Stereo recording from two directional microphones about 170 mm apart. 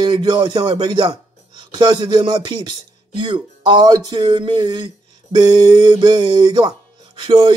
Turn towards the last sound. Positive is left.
turn(degrees=-25)  # may be behind; listen again after turning